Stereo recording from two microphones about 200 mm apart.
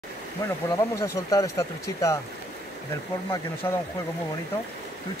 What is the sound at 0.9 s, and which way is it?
Speech, 15° left (ahead or behind).